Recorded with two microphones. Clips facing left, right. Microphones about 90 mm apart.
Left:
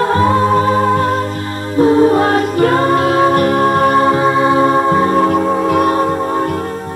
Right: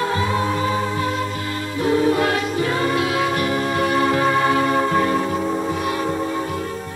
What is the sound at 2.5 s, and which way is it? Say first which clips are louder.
Music: left 8 dB; 50° left (ahead or behind).